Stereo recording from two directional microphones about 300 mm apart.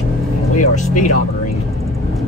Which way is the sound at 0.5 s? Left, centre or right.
Left.